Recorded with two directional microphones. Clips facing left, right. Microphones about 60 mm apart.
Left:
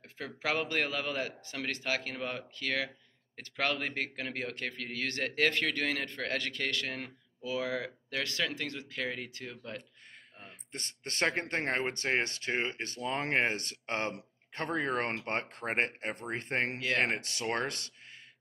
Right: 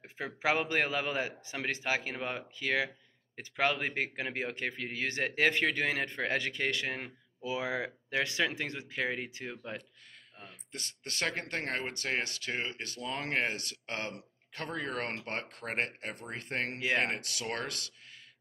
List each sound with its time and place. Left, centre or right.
0.0 s speech: centre
10.4 s speech: left